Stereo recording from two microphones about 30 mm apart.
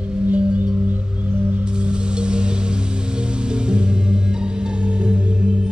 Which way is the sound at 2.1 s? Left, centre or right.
Right.